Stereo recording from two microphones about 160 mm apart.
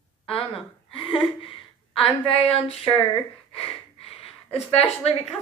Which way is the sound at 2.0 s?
40° left (ahead or behind).